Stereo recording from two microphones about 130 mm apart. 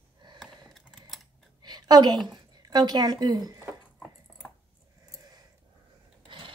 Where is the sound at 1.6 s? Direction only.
30° right (ahead or behind).